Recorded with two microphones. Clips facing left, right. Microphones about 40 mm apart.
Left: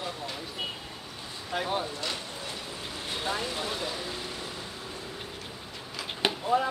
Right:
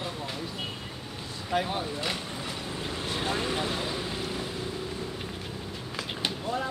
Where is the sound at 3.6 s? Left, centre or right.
Centre.